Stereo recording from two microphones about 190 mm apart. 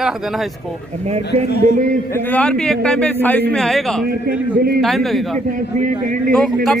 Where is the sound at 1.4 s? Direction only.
60° left (ahead or behind).